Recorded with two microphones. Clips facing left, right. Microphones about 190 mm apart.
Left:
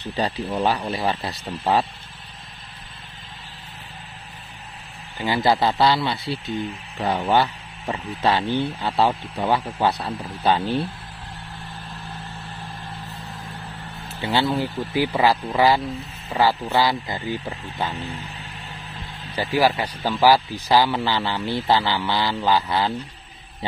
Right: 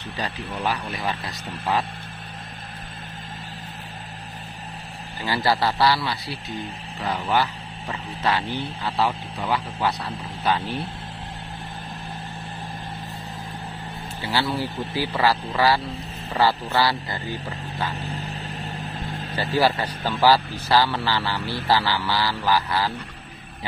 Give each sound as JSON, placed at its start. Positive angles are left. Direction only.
{"t": 0.6, "sound": "speech", "side_deg": 30}
{"t": 5.2, "sound": "speech", "side_deg": 20}
{"t": 14.2, "sound": "a man's voice", "side_deg": 20}
{"t": 18.3, "sound": "music", "side_deg": -40}
{"t": 19.3, "sound": "a man's voice", "side_deg": 15}